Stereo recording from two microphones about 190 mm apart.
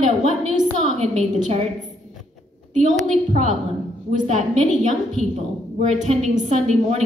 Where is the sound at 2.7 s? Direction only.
40° right (ahead or behind).